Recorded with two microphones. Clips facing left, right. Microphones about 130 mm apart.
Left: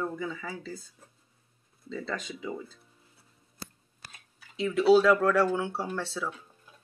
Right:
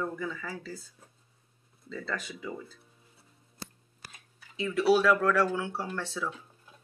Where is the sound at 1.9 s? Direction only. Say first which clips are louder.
Left 1 dB; 20° left (ahead or behind).